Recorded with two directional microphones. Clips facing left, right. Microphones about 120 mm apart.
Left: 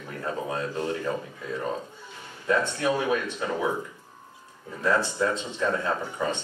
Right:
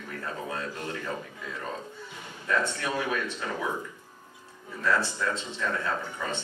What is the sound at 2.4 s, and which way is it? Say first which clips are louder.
Speech: left 4 dB; 15° left (ahead or behind).